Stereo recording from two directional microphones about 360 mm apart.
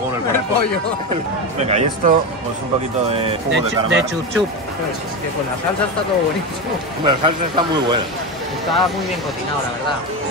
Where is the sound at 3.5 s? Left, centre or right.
Right.